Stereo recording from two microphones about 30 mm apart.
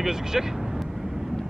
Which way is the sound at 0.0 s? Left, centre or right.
Centre.